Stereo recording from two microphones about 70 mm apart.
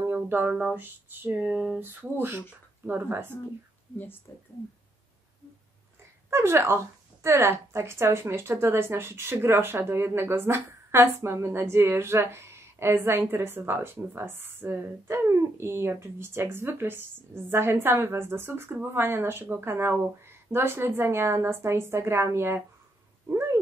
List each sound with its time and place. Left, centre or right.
0.0 s music: right
0.7 s speech: right
1.5 s speech: centre
1.8 s speech: right
6.3 s speech: right
15.0 s speech: right
23.2 s cat: right